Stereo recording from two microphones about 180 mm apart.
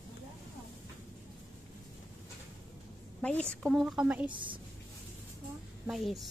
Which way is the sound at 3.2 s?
5° left (ahead or behind).